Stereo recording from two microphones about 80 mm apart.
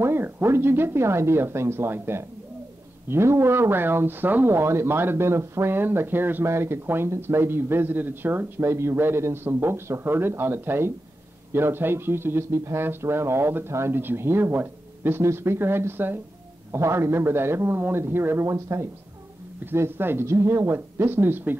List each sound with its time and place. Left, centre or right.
0.0 s a man's voice: right